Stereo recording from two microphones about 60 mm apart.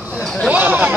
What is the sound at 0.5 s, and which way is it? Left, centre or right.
Speech, right.